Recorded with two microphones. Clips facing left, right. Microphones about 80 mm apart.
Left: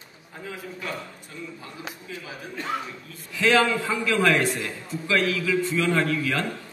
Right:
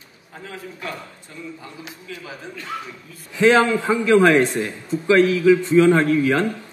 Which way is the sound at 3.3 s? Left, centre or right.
Right.